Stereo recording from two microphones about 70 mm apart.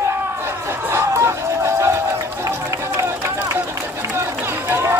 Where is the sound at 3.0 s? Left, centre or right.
Right.